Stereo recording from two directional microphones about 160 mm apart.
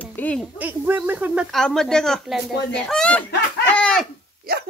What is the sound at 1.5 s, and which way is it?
Speech, centre (ahead or behind).